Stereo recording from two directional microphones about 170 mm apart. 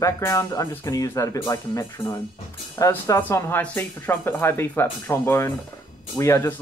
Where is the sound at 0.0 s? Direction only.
20° left (ahead or behind).